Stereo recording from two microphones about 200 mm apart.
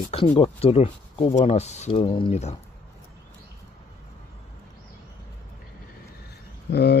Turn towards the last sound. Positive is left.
turn(degrees=55)  # may be behind; listen again after turning